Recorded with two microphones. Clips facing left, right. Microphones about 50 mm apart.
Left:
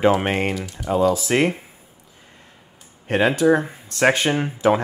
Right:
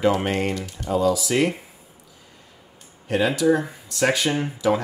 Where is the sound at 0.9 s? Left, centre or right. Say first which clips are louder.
Left 2 dB; left.